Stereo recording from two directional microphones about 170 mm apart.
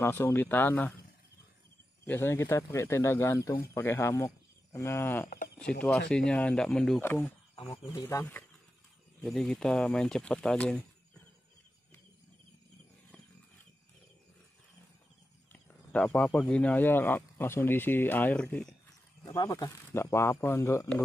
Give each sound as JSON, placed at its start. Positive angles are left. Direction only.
{"t": 0.0, "sound": "speech", "side_deg": 15}
{"t": 2.0, "sound": "speech", "side_deg": 15}
{"t": 15.9, "sound": "speech", "side_deg": 5}
{"t": 19.3, "sound": "speech", "side_deg": 20}